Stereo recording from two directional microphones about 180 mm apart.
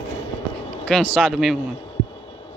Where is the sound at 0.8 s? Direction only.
5° left (ahead or behind).